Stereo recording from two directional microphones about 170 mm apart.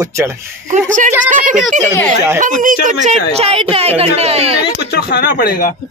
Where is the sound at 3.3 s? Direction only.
35° right (ahead or behind).